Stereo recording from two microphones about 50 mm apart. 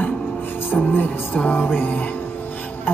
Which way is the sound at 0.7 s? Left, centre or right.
Left.